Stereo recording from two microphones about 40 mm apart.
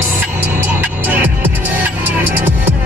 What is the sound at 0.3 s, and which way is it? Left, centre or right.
Music, right.